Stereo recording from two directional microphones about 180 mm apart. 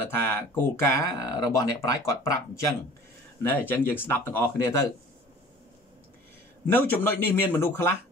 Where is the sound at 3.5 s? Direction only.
10° left (ahead or behind).